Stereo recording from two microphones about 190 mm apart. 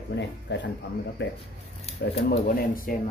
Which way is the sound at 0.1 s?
65° left (ahead or behind).